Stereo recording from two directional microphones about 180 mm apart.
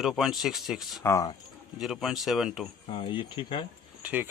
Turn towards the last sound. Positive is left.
turn(degrees=-10)  # may be behind; listen again after turning